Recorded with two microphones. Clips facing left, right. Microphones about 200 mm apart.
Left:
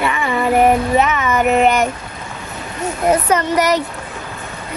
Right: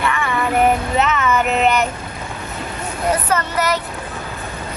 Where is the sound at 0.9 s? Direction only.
10° left (ahead or behind).